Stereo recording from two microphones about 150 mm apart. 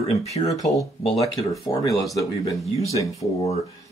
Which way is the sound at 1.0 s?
40° left (ahead or behind).